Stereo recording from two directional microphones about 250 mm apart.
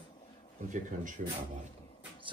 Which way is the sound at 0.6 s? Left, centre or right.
Right.